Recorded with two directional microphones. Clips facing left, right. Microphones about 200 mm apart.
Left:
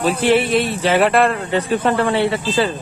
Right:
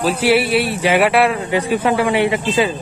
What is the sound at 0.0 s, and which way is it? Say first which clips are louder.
A man's voice: even; 5° right (ahead or behind).